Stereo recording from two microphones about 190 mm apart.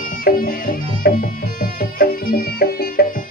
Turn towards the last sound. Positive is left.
turn(degrees=50)  # may be behind; listen again after turning